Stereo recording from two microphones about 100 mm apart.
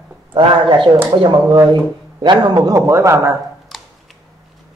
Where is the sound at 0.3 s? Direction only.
55° right (ahead or behind).